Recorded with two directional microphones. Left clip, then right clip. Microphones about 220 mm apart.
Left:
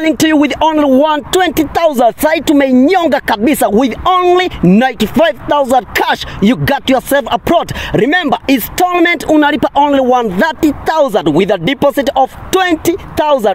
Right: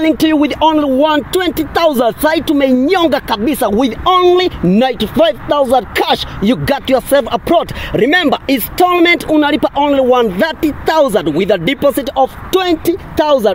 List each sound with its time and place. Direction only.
0.0 s speech: 45° left (ahead or behind)